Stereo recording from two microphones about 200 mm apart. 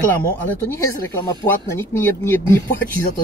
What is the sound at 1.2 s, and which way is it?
Speech, 15° left (ahead or behind).